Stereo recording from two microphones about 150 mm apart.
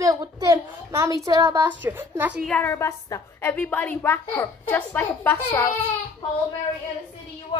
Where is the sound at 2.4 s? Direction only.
10° left (ahead or behind).